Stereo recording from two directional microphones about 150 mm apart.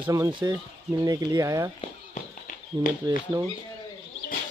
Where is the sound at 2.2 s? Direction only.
55° left (ahead or behind).